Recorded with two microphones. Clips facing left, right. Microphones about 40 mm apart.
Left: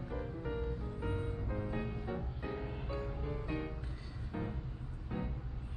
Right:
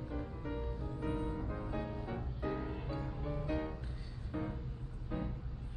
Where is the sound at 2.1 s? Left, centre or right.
Centre.